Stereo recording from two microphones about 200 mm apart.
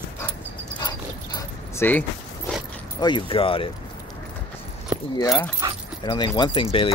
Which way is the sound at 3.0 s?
25° left (ahead or behind).